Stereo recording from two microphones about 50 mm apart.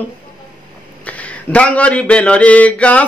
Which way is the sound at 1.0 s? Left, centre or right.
Left.